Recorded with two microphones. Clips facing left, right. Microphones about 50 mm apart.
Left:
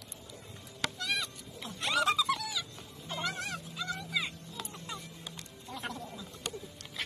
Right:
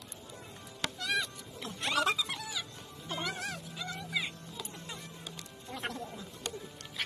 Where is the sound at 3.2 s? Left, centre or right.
Centre.